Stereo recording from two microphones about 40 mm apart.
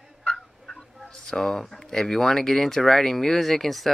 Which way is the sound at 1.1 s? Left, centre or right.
Centre.